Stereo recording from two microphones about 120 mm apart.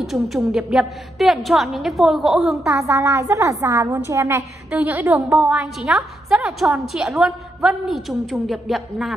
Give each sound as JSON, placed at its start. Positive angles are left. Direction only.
{"t": 0.0, "sound": "a woman's voice", "side_deg": 0}
{"t": 2.7, "sound": "a woman's voice", "side_deg": -25}
{"t": 4.6, "sound": "a woman's voice", "side_deg": -10}
{"t": 5.4, "sound": "a woman's voice", "side_deg": -5}